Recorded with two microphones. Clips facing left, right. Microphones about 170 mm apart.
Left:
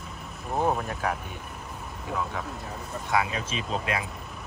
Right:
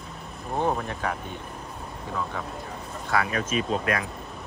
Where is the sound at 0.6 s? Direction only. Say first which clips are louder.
Even; 5° left (ahead or behind).